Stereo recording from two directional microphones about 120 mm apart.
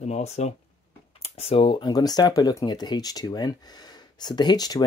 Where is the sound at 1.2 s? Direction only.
55° left (ahead or behind).